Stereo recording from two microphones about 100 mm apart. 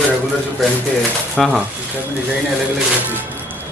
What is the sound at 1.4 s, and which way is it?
Speech, centre (ahead or behind).